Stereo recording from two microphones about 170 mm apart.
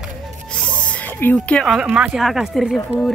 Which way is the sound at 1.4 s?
Centre (ahead or behind).